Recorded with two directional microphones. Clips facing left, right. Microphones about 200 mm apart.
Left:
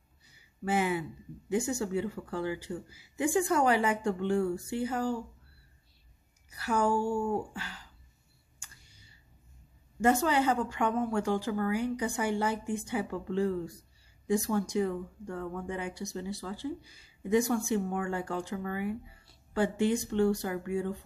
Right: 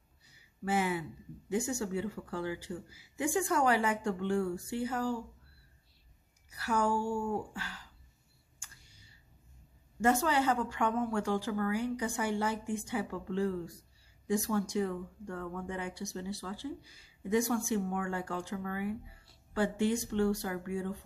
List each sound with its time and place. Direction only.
0.7 s speech: 20° left (ahead or behind)
6.5 s speech: 20° left (ahead or behind)
10.0 s a woman's voice: 15° left (ahead or behind)